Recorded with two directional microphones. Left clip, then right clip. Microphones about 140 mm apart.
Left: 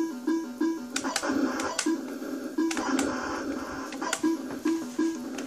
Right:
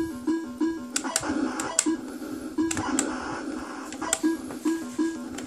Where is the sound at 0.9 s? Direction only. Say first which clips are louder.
Even; 15° right (ahead or behind).